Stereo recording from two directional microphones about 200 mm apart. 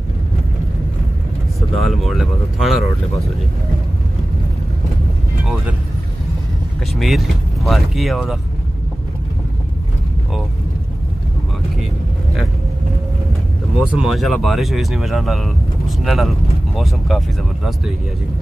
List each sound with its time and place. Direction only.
1.8 s speech: centre (ahead or behind)
5.4 s vehicle: centre (ahead or behind)
7.0 s speech: centre (ahead or behind)
13.7 s speech: centre (ahead or behind)